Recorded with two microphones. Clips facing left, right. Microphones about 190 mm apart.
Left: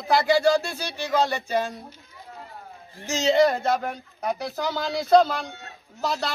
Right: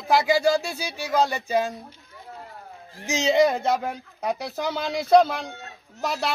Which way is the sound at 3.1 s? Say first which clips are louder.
Even; 20° right (ahead or behind).